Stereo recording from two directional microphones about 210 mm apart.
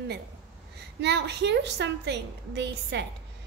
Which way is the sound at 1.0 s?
55° right (ahead or behind).